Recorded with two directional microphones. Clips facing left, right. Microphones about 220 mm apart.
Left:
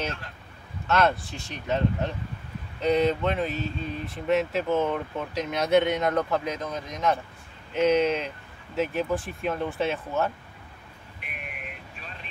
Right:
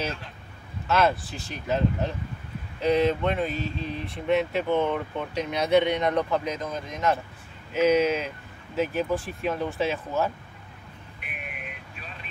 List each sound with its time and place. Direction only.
0.0 s a sound: centre (ahead or behind)
0.8 s speech: 5° right (ahead or behind)
11.1 s vehicle: centre (ahead or behind)